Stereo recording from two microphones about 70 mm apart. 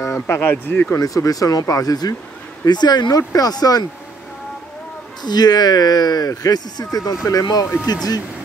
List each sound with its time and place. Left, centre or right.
0.0 s speech: left
0.9 s speech: left
2.6 s speech: left
3.2 s speech: left
5.2 s speech: left